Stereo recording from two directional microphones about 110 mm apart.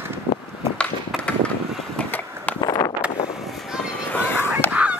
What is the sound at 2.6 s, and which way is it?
Vehicle, 35° left (ahead or behind).